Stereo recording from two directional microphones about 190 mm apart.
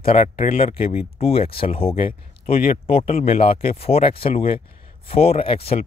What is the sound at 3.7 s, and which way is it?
Speech, 30° left (ahead or behind).